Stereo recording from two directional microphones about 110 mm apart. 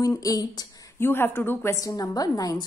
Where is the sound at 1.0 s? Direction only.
20° left (ahead or behind).